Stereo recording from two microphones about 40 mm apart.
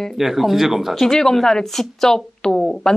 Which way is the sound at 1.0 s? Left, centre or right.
Centre.